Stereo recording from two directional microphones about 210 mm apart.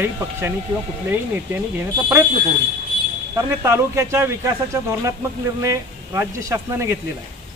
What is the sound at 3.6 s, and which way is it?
Speech, 15° right (ahead or behind).